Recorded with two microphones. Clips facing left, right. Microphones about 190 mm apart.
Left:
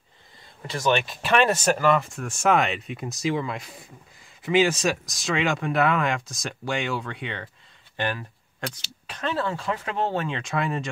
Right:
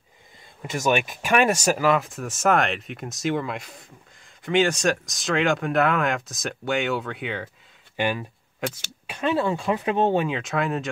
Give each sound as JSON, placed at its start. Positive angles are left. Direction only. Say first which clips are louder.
{"t": 0.6, "sound": "speech", "louder": "right 1 dB", "side_deg": -10}
{"t": 10.2, "sound": "speech", "louder": "right 2 dB", "side_deg": -5}